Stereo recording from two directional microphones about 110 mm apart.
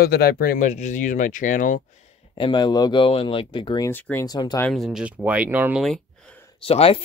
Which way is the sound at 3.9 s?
15° left (ahead or behind).